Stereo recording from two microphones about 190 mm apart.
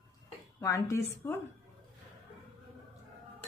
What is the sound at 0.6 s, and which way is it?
Speech, 15° left (ahead or behind).